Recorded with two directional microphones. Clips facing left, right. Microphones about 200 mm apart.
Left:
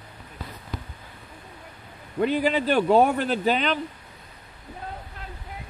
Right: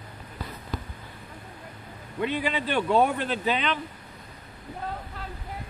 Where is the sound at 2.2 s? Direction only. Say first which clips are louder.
Left 5 dB; 45° left (ahead or behind).